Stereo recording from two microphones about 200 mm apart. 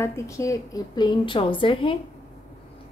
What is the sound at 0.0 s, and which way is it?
Speech, 15° left (ahead or behind).